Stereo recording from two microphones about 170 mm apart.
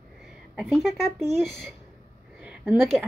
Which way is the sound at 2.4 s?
10° right (ahead or behind).